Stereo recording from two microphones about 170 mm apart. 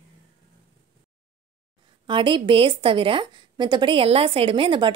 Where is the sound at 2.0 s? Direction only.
30° right (ahead or behind).